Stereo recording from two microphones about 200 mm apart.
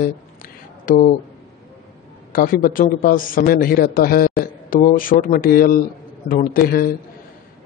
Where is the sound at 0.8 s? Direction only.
45° left (ahead or behind).